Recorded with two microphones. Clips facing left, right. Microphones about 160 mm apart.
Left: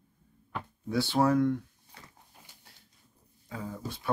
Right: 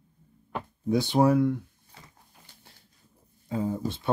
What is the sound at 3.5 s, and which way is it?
Speech, 25° right (ahead or behind).